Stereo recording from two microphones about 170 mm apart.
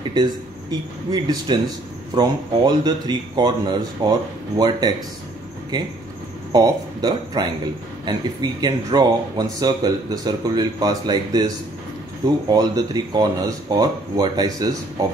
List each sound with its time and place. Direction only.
0.1 s speech: 25° right (ahead or behind)
6.5 s speech: 25° right (ahead or behind)